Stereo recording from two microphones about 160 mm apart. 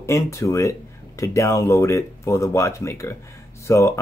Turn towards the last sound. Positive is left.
turn(degrees=15)  # may be behind; listen again after turning